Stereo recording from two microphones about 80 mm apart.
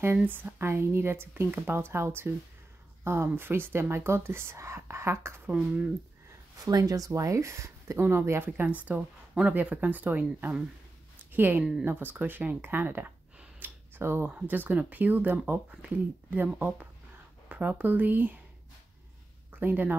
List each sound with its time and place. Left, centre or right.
0.2 s speech: right
6.6 s speech: right
19.6 s speech: right